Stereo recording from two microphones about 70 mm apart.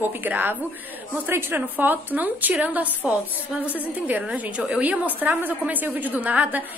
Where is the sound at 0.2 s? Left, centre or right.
Right.